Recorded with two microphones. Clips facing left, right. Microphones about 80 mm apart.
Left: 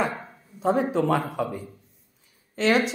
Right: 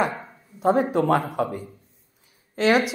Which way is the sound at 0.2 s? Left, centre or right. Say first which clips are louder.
Right 3 dB; centre.